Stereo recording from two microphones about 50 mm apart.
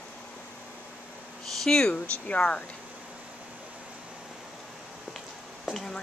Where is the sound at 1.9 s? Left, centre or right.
Left.